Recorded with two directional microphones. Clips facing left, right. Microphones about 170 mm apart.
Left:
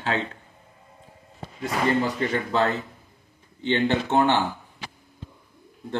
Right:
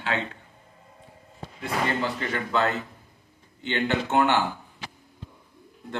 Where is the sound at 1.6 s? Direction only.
40° left (ahead or behind).